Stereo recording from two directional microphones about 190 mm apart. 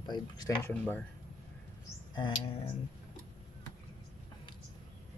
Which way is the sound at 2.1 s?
25° left (ahead or behind).